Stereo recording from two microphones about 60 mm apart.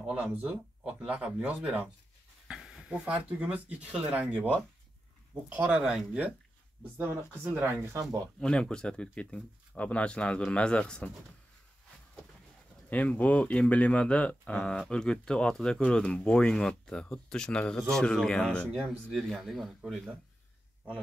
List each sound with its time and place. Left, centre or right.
0.0 s speech: right
2.4 s a sound: centre
3.1 s speech: right
5.5 s speech: right
5.8 s speech: centre
6.8 s speech: right
8.0 s speech: right
8.4 s speech: centre
12.9 s speech: left
19.2 s speech: centre